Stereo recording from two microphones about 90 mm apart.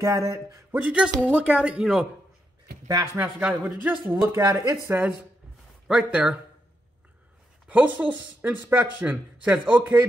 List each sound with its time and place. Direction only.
0.0 s a man's voice: 35° right (ahead or behind)
0.7 s speech: 15° right (ahead or behind)
3.2 s speech: 10° right (ahead or behind)
4.3 s a man's voice: 30° right (ahead or behind)
5.9 s speech: 10° right (ahead or behind)
7.6 s speech: 15° right (ahead or behind)